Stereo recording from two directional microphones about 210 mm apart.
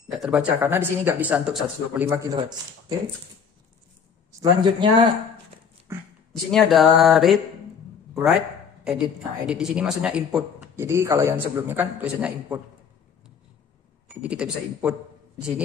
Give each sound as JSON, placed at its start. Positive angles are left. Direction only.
{"t": 0.1, "sound": "speech", "side_deg": -5}
{"t": 2.0, "sound": "speech", "side_deg": -15}
{"t": 4.4, "sound": "speech", "side_deg": -20}
{"t": 5.9, "sound": "a sound", "side_deg": -10}
{"t": 6.3, "sound": "a man's voice", "side_deg": 0}
{"t": 14.0, "sound": "speech", "side_deg": -5}